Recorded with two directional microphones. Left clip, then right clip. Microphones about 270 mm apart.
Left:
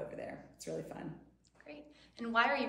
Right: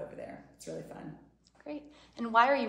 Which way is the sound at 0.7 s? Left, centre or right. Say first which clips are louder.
Even; centre.